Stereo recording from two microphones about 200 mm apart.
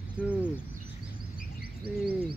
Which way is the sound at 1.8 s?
50° right (ahead or behind).